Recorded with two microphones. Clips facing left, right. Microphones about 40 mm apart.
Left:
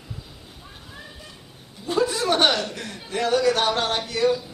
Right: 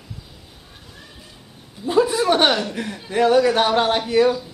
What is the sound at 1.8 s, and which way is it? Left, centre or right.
A man's voice, centre.